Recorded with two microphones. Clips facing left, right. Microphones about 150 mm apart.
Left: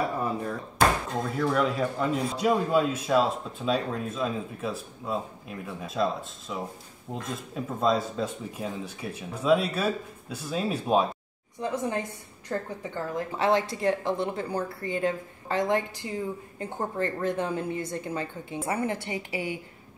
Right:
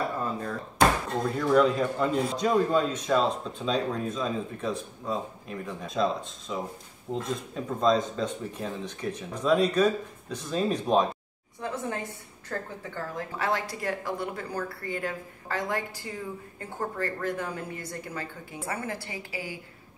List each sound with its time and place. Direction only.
1.3 s a man's voice: centre (ahead or behind); by 19.6 s 20° left (ahead or behind)